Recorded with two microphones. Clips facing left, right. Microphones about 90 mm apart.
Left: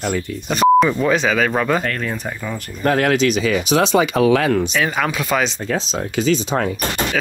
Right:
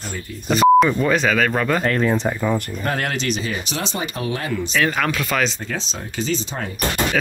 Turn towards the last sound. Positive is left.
turn(degrees=70)  # may be behind; listen again after turning